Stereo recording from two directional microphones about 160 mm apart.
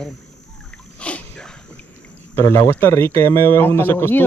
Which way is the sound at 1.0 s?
5° left (ahead or behind).